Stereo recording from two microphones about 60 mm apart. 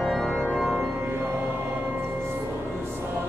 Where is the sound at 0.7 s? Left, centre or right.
Centre.